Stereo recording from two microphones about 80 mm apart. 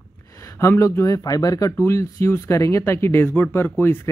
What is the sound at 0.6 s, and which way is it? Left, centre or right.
Speech, left.